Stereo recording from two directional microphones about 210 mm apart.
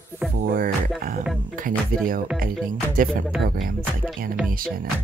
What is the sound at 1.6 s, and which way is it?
Speech, 40° right (ahead or behind).